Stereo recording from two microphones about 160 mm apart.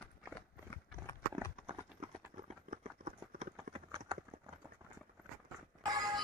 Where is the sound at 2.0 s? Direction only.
45° right (ahead or behind).